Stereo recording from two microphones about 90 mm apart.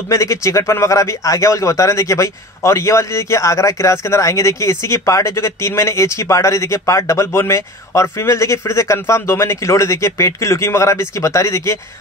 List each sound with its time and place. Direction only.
0.1 s a man's voice: 35° left (ahead or behind)